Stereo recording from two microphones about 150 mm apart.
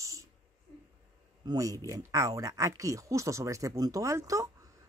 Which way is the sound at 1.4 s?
20° right (ahead or behind).